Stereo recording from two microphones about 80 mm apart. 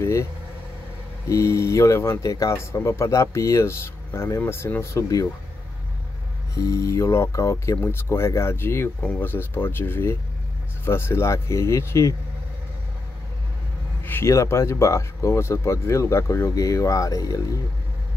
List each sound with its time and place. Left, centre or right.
0.0 s speech: left
1.3 s speech: left
6.5 s speech: left
14.0 s a man's voice: left
14.3 s speech: left